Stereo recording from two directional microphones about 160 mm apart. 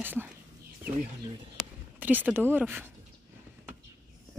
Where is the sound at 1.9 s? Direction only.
10° right (ahead or behind).